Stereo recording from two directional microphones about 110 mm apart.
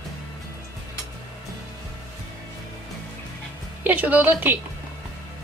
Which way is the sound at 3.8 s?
15° right (ahead or behind).